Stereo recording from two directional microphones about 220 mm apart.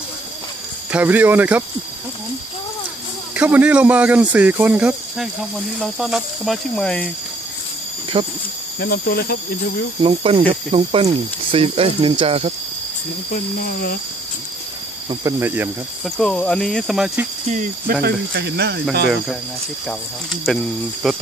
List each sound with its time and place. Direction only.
0.9 s speech: 10° right (ahead or behind)
3.3 s speech: 5° right (ahead or behind)
8.2 s speech: 25° right (ahead or behind)
8.7 s speech: 45° left (ahead or behind)
10.0 s speech: 25° right (ahead or behind)
13.3 s speech: 40° left (ahead or behind)
15.0 s speech: 10° right (ahead or behind)
16.2 s speech: 5° left (ahead or behind)
17.5 s speech: 35° right (ahead or behind)
18.0 s speech: 45° right (ahead or behind)
19.9 s speech: centre (ahead or behind)